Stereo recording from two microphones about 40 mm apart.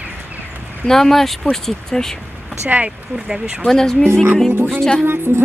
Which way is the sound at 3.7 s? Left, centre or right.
Centre.